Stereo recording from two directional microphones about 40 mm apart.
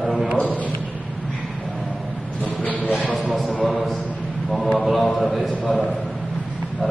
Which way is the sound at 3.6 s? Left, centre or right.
Centre.